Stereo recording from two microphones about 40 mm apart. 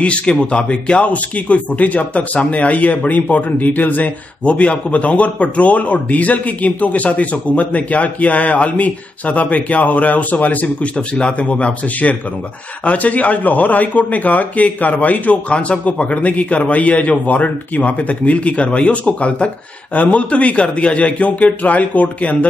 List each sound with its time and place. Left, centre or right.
0.0 s speech: left
1.1 s a man's voice: left
11.0 s a man's voice: left